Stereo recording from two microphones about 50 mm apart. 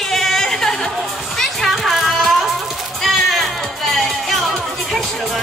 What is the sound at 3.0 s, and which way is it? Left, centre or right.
Music, centre.